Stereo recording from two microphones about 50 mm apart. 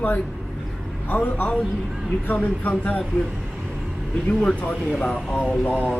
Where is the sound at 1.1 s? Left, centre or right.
Left.